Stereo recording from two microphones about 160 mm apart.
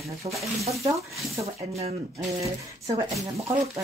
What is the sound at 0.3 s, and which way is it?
Speech, 20° right (ahead or behind).